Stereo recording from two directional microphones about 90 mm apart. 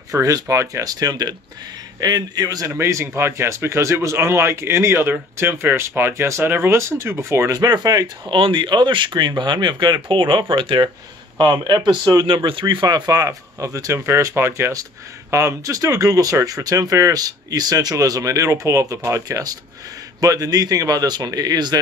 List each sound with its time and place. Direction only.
0.1 s speech: 40° right (ahead or behind)
0.8 s speech: 45° right (ahead or behind)
2.7 s speech: 30° right (ahead or behind)
7.5 s speech: 45° right (ahead or behind)
8.3 s speech: 65° right (ahead or behind)
12.1 s speech: 45° right (ahead or behind)
12.4 s speech: 60° right (ahead or behind); by 14.0 s 40° right (ahead or behind)
14.0 s speech: 30° right (ahead or behind); by 21.7 s 50° right (ahead or behind)